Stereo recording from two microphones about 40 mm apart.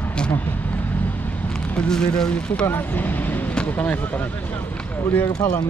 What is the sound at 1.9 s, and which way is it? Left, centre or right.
Speech, centre.